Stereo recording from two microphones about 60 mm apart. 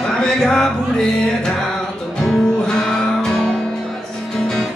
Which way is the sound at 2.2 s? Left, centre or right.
Centre.